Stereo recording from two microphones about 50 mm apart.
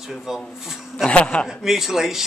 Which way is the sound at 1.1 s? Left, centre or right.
Left.